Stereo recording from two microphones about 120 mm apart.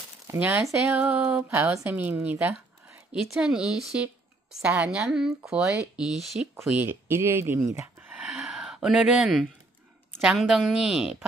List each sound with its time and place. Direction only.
0.4 s a woman's voice: 10° right (ahead or behind)
7.7 s a sound: 15° right (ahead or behind)
10.2 s a woman's voice: centre (ahead or behind)